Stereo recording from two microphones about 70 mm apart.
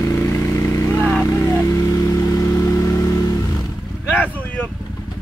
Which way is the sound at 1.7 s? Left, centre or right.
Left.